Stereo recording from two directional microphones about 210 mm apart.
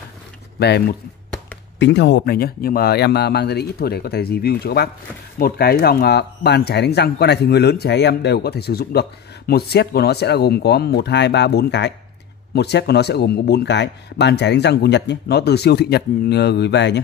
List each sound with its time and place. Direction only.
0.6 s speech: 50° left (ahead or behind)